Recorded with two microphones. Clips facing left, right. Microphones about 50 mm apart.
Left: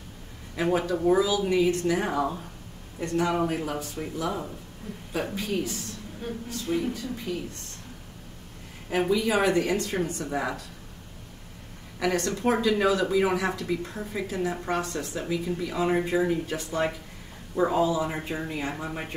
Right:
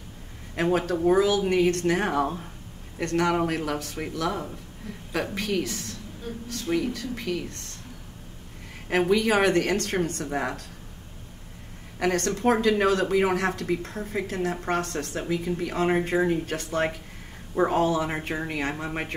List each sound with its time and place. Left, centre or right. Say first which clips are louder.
0.7 s speech: right 1 dB; right
3.0 s speech: right 2 dB; right
9.1 s speech: right 2 dB; right
10.2 s speech: right 1 dB; right
12.0 s speech: right 2 dB; right